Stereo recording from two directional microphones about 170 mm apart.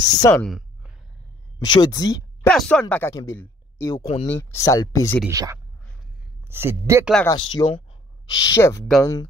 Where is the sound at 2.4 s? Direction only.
5° left (ahead or behind).